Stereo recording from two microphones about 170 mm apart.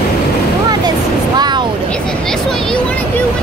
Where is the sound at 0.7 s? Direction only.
25° right (ahead or behind).